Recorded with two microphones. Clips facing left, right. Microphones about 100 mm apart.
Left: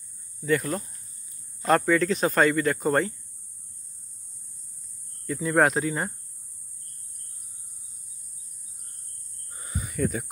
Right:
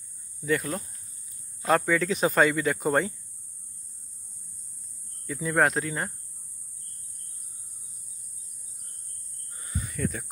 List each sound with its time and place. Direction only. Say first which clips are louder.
0.5 s speech: left 2 dB; centre (ahead or behind)
5.2 s speech: left 2 dB; centre (ahead or behind)
9.5 s a sound: left 1 dB; 25° left (ahead or behind)
9.9 s speech: left 5 dB; 5° left (ahead or behind)